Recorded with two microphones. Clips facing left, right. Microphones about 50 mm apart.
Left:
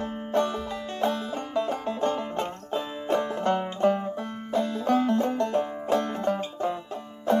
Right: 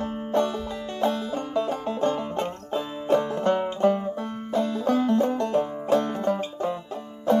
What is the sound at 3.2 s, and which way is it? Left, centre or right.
Music, centre.